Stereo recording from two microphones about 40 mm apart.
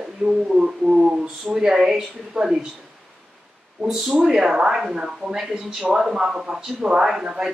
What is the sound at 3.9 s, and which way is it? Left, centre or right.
Speech, centre.